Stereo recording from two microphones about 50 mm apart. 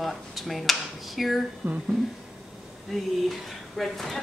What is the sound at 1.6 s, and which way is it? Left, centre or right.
Speech, right.